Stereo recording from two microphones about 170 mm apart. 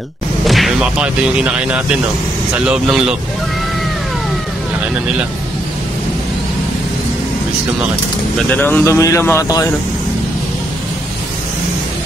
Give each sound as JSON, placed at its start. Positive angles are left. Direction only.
{"t": 0.5, "sound": "speech", "side_deg": 0}
{"t": 8.4, "sound": "speech", "side_deg": 10}